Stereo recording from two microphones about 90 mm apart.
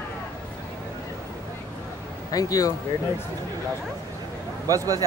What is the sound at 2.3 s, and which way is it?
Speech, 40° left (ahead or behind).